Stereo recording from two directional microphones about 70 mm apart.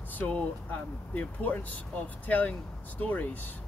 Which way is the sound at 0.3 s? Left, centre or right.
Left.